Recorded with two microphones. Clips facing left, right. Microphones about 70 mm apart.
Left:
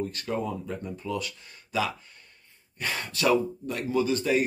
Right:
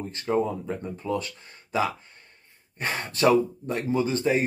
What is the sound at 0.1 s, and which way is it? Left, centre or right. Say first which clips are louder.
Speech: right 5 dB; right.